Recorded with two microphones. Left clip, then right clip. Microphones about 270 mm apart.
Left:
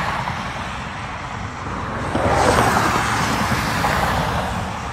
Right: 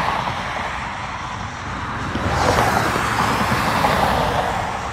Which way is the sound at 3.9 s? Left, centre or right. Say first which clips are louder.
Right 2 dB; right.